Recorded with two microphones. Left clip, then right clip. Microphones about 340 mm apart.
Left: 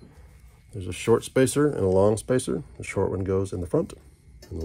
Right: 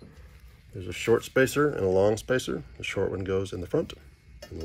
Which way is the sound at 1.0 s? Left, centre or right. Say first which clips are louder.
Left 2 dB; left.